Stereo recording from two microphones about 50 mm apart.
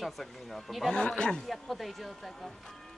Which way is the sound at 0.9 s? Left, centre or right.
Centre.